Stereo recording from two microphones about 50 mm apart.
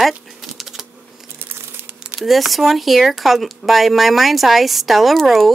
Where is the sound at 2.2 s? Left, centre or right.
Centre.